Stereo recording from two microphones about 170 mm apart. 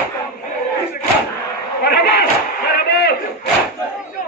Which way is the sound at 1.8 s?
70° left (ahead or behind).